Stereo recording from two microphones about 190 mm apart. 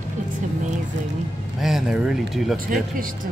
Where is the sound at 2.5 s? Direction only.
45° right (ahead or behind).